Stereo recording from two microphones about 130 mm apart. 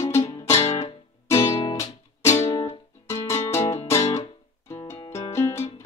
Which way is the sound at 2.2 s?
60° left (ahead or behind).